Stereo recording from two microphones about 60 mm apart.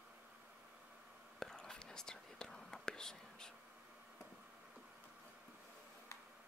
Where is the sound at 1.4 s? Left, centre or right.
Centre.